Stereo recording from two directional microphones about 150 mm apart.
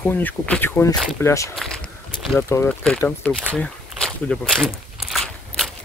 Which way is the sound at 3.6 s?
5° left (ahead or behind).